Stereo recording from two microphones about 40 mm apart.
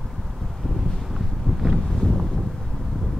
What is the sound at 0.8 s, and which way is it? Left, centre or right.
Wind noise, centre.